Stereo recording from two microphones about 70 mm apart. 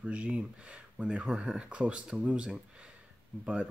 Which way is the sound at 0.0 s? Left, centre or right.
Centre.